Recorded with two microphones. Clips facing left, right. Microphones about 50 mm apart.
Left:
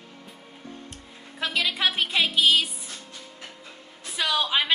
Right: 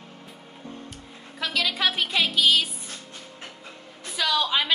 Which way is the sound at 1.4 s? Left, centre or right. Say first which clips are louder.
Even; centre.